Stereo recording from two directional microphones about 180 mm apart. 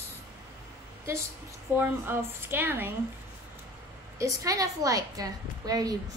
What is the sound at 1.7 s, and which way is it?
A woman's voice, 10° right (ahead or behind).